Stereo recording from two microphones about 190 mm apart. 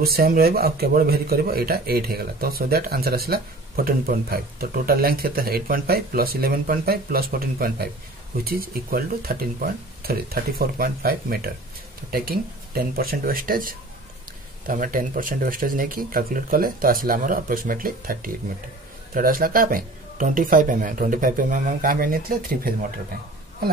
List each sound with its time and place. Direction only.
0.0 s speech: 50° right (ahead or behind)